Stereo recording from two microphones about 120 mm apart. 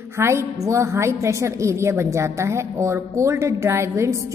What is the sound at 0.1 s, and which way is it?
A woman's voice, 20° right (ahead or behind).